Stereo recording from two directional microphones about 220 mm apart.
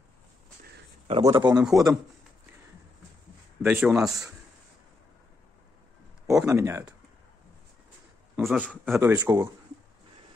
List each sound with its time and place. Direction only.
1.0 s a man's voice: 20° right (ahead or behind)
1.6 s speech: centre (ahead or behind)
3.6 s speech: 5° right (ahead or behind)
6.2 s speech: 15° right (ahead or behind)
8.4 s speech: centre (ahead or behind)